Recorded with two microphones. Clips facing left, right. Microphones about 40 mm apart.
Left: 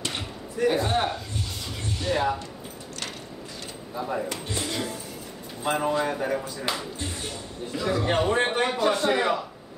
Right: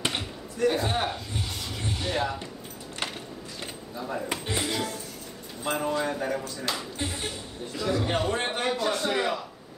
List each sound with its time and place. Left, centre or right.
0.6 s a man's voice: centre
3.9 s speech: centre
4.3 s speech: centre
5.6 s a man's voice: centre